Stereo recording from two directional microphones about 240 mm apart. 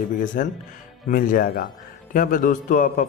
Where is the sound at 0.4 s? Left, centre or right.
Left.